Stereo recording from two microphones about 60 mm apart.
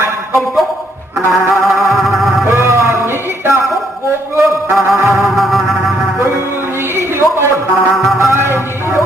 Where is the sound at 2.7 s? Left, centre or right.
Right.